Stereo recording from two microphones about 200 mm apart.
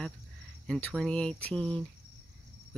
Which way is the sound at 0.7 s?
5° left (ahead or behind).